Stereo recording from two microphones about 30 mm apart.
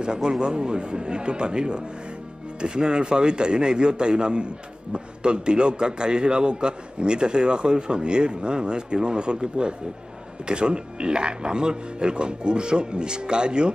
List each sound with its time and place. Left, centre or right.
0.0 s a man's voice: right